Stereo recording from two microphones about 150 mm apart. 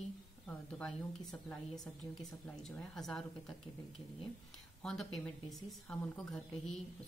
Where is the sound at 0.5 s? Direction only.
5° left (ahead or behind).